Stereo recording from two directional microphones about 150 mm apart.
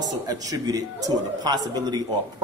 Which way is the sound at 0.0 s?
25° right (ahead or behind).